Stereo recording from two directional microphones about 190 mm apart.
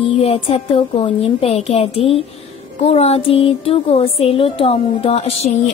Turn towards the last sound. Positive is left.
turn(degrees=30)  # may be behind; listen again after turning